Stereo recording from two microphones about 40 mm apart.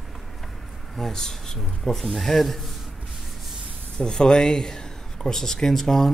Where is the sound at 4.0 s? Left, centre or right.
Centre.